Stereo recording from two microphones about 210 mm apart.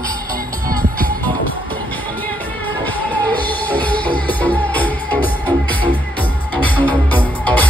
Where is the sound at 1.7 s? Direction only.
10° left (ahead or behind).